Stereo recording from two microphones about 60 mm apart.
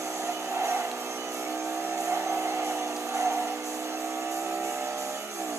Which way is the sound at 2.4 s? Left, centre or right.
Right.